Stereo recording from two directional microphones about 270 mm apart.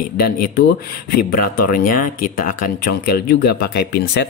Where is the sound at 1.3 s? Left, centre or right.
Left.